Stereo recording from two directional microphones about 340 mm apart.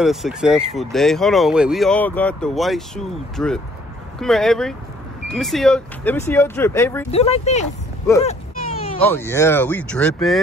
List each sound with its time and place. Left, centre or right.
0.0 s speech: centre
7.1 s speech: centre
8.2 s a sound: centre
9.0 s speech: centre